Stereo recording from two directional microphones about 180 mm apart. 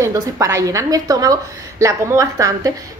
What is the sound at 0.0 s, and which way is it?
A woman's voice, 15° right (ahead or behind).